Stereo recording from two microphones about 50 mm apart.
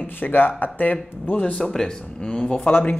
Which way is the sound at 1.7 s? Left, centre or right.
Centre.